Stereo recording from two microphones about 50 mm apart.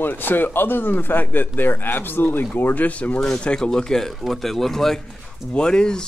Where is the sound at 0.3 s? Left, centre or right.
Left.